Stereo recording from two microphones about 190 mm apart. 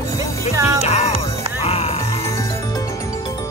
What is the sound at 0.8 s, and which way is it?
Music, 35° left (ahead or behind).